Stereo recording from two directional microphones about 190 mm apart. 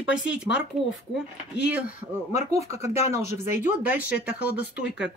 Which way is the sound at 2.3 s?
35° left (ahead or behind).